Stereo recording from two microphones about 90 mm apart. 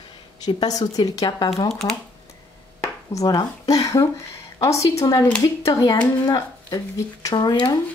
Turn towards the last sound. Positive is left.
turn(degrees=50)  # may be behind; listen again after turning